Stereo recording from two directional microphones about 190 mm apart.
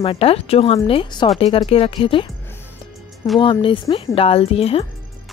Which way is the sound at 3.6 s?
25° left (ahead or behind).